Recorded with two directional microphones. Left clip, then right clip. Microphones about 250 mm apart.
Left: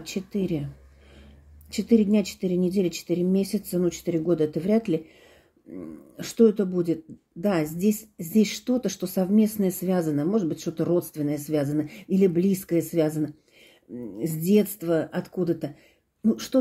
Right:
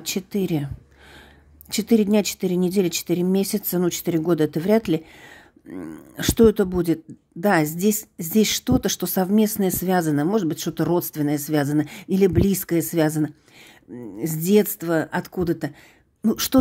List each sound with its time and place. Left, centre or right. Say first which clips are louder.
0.0 s speech: right 4 dB; right
1.7 s a woman's voice: right 3 dB; right